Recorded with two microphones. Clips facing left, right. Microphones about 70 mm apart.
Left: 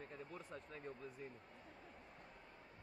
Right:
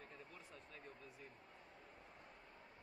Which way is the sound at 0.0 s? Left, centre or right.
Left.